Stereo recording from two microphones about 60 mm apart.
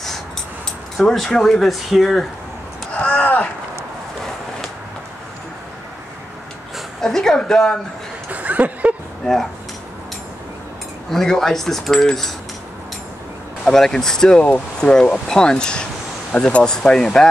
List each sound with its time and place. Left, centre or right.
0.7 s speech: centre
2.9 s a sound: centre
7.0 s speech: centre
8.3 s a sound: right
9.2 s speech: centre
11.1 s speech: centre
13.7 s speech: centre